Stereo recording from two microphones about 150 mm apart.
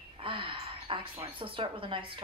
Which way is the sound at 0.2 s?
35° right (ahead or behind).